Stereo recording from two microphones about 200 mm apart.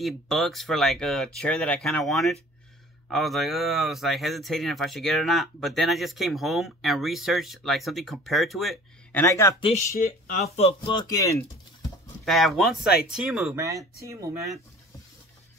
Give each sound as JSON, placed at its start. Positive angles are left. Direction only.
{"t": 0.0, "sound": "speech", "side_deg": 0}
{"t": 9.2, "sound": "speech", "side_deg": 15}
{"t": 9.9, "sound": "speech", "side_deg": 45}
{"t": 12.3, "sound": "speech", "side_deg": 0}
{"t": 13.6, "sound": "speech", "side_deg": -15}